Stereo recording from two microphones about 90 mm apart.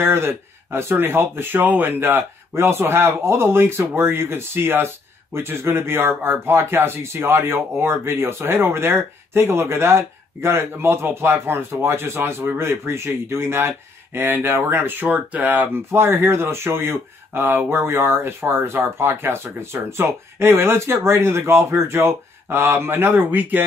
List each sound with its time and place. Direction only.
0.0 s speech: 25° right (ahead or behind)